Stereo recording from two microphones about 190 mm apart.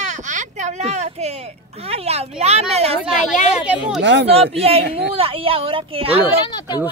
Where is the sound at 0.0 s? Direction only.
40° right (ahead or behind).